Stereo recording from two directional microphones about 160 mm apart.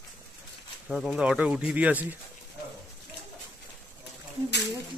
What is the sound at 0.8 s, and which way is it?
A man's voice, centre (ahead or behind).